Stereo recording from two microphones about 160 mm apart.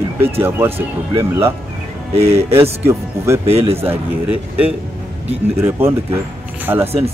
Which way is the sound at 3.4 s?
40° right (ahead or behind).